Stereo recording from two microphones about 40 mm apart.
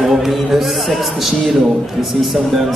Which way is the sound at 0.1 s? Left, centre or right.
Centre.